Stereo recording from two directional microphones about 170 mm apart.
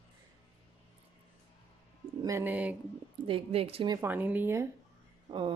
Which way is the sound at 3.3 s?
35° right (ahead or behind).